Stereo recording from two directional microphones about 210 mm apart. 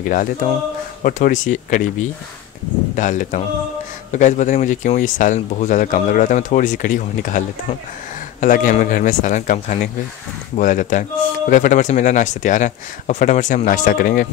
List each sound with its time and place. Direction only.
0.0 s speech: 40° left (ahead or behind)
3.0 s speech: 35° left (ahead or behind)